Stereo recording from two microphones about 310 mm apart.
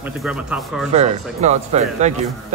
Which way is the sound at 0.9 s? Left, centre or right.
Right.